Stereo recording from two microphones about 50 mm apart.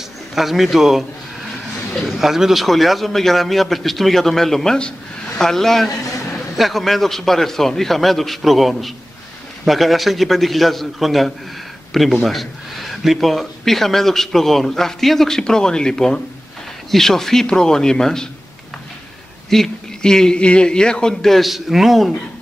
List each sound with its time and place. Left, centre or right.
0.3 s a man's voice: centre
19.5 s a man's voice: centre